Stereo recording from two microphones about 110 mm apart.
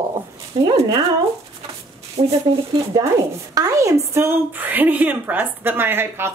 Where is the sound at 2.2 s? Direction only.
70° right (ahead or behind).